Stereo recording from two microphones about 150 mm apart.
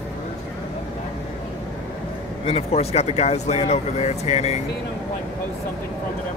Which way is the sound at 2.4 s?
40° left (ahead or behind).